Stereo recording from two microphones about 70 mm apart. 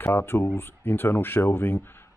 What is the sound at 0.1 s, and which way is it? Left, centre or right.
Speech, left.